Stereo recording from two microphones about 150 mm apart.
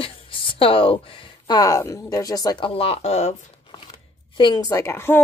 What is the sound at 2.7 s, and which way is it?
Speech, 40° left (ahead or behind).